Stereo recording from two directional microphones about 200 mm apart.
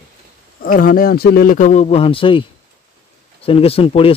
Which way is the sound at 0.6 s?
45° left (ahead or behind).